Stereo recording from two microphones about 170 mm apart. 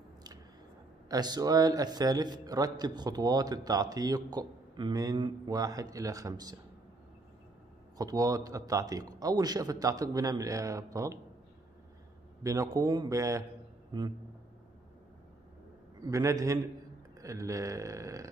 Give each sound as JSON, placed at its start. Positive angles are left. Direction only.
{"t": 1.0, "sound": "a man's voice", "side_deg": -25}
{"t": 8.0, "sound": "a man's voice", "side_deg": -20}
{"t": 12.4, "sound": "a man's voice", "side_deg": -20}
{"t": 16.1, "sound": "a man's voice", "side_deg": -20}